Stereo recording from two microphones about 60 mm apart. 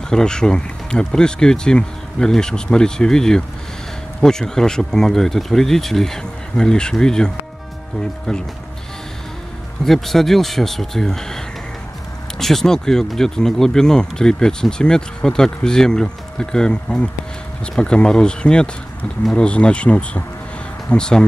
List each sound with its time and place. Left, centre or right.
0.1 s speech: centre
9.8 s speech: centre